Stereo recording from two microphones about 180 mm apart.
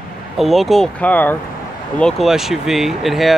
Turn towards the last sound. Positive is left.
turn(degrees=0)  # may be behind; listen again after turning